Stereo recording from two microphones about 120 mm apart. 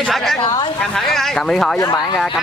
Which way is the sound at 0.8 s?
5° left (ahead or behind).